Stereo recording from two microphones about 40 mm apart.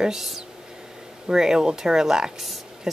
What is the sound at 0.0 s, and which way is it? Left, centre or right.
Speech, centre.